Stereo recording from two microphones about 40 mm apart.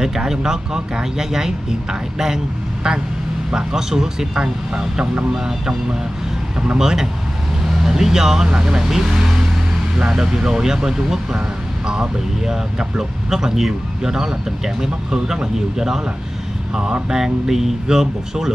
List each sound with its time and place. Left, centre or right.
0.0 s speech: centre
6.8 s speech: centre
17.1 s speech: centre